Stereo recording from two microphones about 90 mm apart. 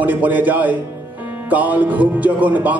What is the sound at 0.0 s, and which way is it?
A man's voice, 20° right (ahead or behind).